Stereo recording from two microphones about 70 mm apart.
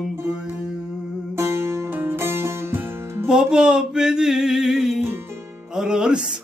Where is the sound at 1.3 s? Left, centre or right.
Right.